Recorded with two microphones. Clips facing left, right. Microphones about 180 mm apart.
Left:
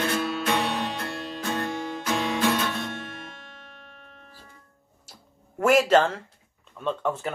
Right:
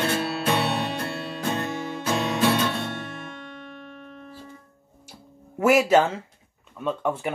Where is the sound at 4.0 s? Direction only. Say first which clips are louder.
Right 9 dB; 45° right (ahead or behind).